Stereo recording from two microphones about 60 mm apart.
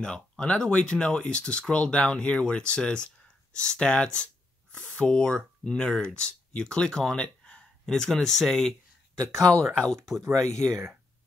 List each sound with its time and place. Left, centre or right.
0.0 s speech: centre
9.2 s speech: right
9.8 s speech: centre